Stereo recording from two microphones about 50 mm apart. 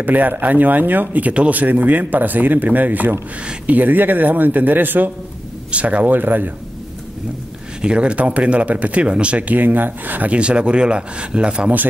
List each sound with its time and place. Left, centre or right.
0.0 s speech: right
5.7 s speech: right
7.8 s speech: right
10.3 s speech: right